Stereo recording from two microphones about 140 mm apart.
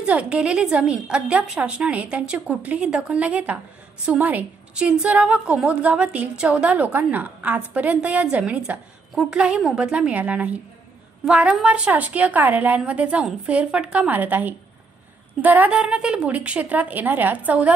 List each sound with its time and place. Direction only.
0.0 s a woman's voice: 10° right (ahead or behind)